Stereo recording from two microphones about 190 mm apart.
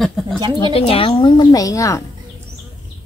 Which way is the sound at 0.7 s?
30° left (ahead or behind).